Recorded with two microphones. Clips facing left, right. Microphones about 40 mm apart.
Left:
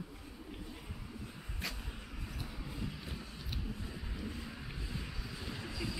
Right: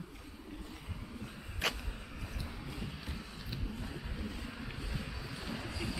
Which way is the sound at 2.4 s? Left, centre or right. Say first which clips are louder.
Right 1 dB; centre.